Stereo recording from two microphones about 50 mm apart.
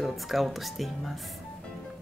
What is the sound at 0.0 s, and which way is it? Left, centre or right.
Speech, centre.